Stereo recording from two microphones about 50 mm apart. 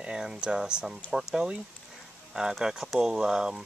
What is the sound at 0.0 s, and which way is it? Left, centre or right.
Speech, centre.